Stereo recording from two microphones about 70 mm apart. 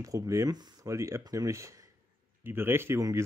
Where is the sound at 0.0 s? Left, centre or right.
Right.